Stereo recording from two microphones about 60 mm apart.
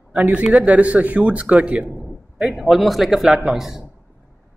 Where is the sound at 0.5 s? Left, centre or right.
Right.